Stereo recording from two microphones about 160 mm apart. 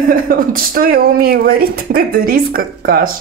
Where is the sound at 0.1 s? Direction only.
65° right (ahead or behind).